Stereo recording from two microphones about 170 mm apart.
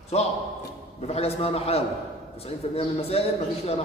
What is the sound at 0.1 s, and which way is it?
A man's voice, 40° left (ahead or behind).